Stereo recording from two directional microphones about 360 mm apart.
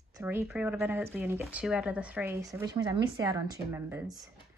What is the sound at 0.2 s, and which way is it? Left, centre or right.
Speech, centre.